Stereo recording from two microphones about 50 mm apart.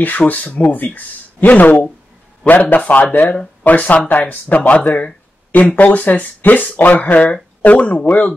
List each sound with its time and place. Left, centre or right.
0.3 s speech: left